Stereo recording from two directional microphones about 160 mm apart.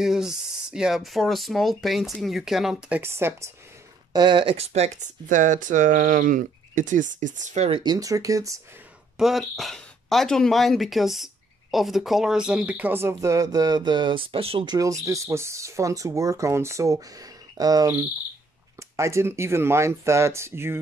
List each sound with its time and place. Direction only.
0.0 s speech: 5° right (ahead or behind)
3.0 s speech: 15° right (ahead or behind)
4.1 s speech: 30° right (ahead or behind)
7.8 s speech: 25° right (ahead or behind)
9.2 s speech: centre (ahead or behind)